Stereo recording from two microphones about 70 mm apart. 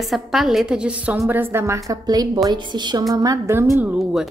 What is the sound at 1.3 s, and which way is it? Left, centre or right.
Speech, right.